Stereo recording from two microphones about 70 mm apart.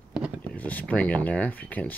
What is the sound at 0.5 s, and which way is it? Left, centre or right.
Speech, left.